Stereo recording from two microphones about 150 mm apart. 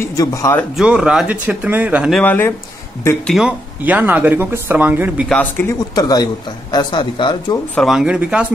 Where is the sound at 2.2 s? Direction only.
15° left (ahead or behind).